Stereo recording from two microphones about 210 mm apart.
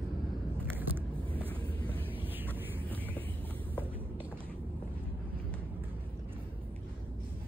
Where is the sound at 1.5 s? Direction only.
25° right (ahead or behind).